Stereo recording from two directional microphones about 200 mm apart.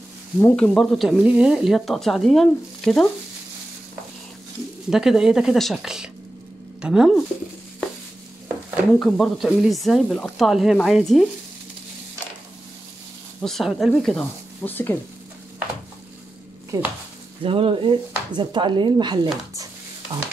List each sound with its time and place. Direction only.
0.4 s speech: 15° left (ahead or behind)
0.7 s speech: centre (ahead or behind)
4.8 s speech: 5° right (ahead or behind)
9.0 s speech: centre (ahead or behind)
13.4 s speech: centre (ahead or behind)
16.7 s speech: 20° right (ahead or behind)